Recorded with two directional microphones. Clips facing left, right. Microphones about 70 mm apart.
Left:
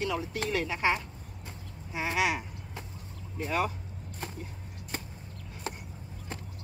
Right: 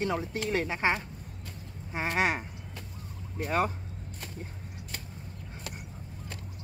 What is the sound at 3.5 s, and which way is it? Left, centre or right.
Speech, right.